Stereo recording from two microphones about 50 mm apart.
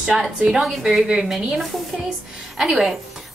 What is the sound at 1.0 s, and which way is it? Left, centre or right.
Speech, centre.